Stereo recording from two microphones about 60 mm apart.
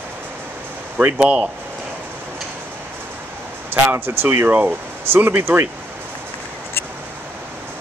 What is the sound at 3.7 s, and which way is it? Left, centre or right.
Speech, right.